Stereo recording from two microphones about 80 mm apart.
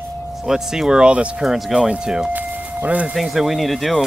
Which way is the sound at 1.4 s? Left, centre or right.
Centre.